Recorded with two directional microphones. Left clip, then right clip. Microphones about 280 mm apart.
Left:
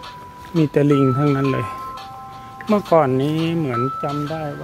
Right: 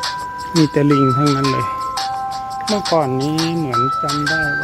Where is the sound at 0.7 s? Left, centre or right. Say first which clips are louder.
Even; centre.